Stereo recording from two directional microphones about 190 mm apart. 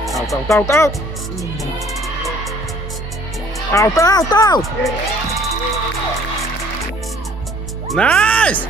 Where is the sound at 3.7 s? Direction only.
15° left (ahead or behind).